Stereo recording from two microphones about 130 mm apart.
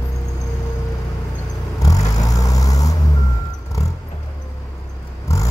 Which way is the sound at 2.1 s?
25° left (ahead or behind).